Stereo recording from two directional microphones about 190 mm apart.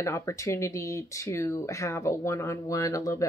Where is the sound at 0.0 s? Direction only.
15° left (ahead or behind).